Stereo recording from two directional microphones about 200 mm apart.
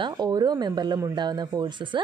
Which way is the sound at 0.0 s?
20° right (ahead or behind).